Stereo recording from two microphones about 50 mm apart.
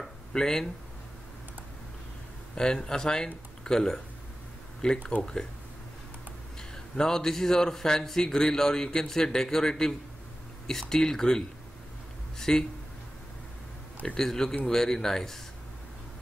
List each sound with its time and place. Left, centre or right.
0.3 s speech: centre
2.5 s a man's voice: centre
7.0 s a man's voice: centre
14.0 s a man's voice: centre